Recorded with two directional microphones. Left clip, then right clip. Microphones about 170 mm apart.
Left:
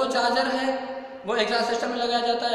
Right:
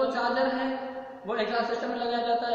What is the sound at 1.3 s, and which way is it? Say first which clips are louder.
Speech: left 5 dB; 15° left (ahead or behind).